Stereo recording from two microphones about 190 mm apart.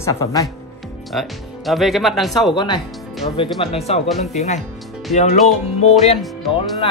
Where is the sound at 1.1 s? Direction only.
Centre (ahead or behind).